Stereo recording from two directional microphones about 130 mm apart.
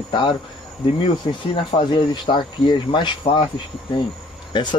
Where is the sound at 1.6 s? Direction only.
40° left (ahead or behind).